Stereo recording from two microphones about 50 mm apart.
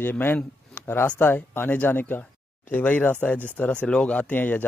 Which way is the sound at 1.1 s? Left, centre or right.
Left.